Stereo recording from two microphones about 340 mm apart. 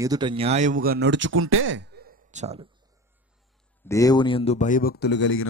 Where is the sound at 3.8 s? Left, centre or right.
Centre; by 5.4 s left.